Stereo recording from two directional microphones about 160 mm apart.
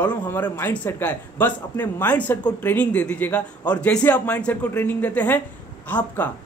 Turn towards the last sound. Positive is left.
turn(degrees=10)  # may be behind; listen again after turning